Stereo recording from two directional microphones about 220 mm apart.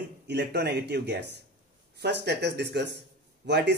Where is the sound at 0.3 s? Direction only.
50° right (ahead or behind).